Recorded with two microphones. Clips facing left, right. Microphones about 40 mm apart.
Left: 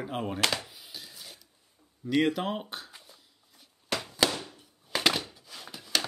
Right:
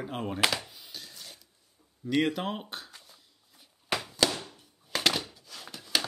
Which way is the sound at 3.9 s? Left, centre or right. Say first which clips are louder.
Right 1 dB; centre.